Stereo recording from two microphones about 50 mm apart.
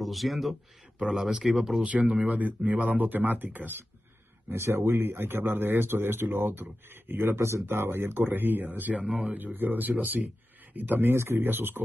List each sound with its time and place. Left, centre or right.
0.0 s speech: centre
0.9 s speech: centre
1.9 s speech: right
4.5 s speech: right
11.1 s speech: right